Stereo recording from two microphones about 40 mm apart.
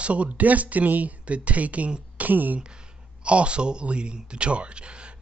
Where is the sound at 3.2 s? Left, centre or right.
Right.